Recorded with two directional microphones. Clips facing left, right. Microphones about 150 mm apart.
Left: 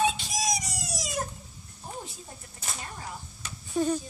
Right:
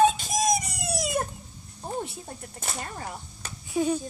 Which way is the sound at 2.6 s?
55° right (ahead or behind).